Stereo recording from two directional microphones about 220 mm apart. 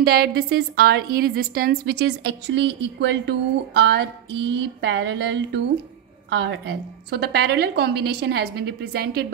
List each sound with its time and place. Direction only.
0.0 s a woman's voice: 45° right (ahead or behind)